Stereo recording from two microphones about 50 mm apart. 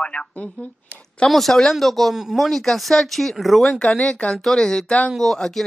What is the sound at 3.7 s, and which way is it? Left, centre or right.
Speech, centre.